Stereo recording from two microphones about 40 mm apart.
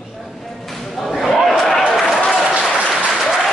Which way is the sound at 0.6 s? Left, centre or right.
Centre.